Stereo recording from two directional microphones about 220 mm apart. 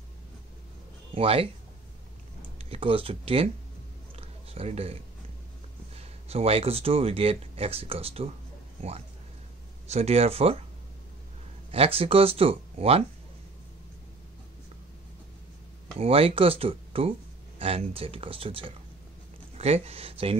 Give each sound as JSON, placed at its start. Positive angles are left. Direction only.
{"t": 1.1, "sound": "speech", "side_deg": -25}
{"t": 2.6, "sound": "speech", "side_deg": -25}
{"t": 4.5, "sound": "speech", "side_deg": -25}
{"t": 5.9, "sound": "speech", "side_deg": -25}
{"t": 9.8, "sound": "speech", "side_deg": -30}
{"t": 11.7, "sound": "speech", "side_deg": -25}
{"t": 16.0, "sound": "speech", "side_deg": -25}